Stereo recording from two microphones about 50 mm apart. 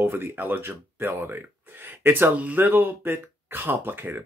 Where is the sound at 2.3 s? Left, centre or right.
Right.